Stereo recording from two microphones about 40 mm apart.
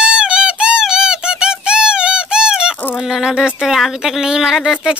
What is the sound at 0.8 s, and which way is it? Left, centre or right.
Squeak, centre.